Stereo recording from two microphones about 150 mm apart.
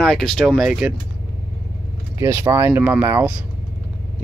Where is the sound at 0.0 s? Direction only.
5° left (ahead or behind).